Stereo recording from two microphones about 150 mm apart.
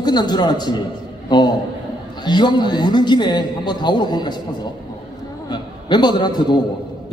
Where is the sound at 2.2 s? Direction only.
30° left (ahead or behind).